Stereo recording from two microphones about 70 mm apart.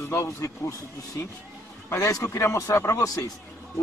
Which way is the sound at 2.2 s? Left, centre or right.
Left.